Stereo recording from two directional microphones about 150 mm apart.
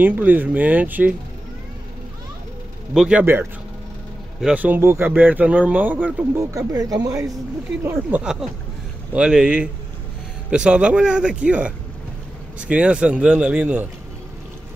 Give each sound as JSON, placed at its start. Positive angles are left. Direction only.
{"t": 0.0, "sound": "speech", "side_deg": -10}
{"t": 2.9, "sound": "speech", "side_deg": -5}
{"t": 6.5, "sound": "speech", "side_deg": -20}